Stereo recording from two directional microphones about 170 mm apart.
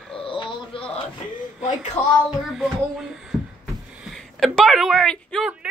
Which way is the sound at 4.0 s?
Centre (ahead or behind).